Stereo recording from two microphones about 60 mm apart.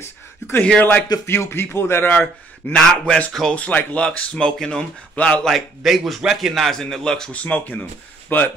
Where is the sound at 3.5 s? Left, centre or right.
Left.